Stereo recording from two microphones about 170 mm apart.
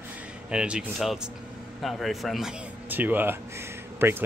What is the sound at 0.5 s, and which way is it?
Speech, 5° right (ahead or behind).